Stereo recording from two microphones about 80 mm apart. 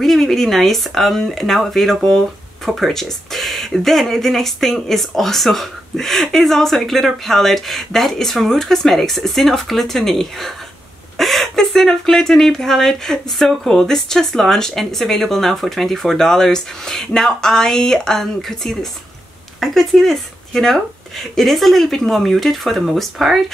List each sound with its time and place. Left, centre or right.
0.0 s speech: centre